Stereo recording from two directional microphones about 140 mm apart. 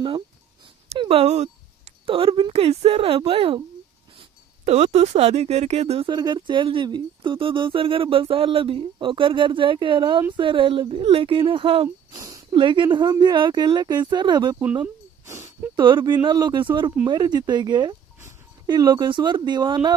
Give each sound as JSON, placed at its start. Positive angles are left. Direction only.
{"t": 0.9, "sound": "speech", "side_deg": -45}
{"t": 4.6, "sound": "speech", "side_deg": -50}
{"t": 6.0, "sound": "speech", "side_deg": -30}
{"t": 12.1, "sound": "a sound", "side_deg": -25}
{"t": 12.4, "sound": "speech", "side_deg": -35}
{"t": 15.2, "sound": "a sound", "side_deg": -20}
{"t": 15.7, "sound": "speech", "side_deg": -35}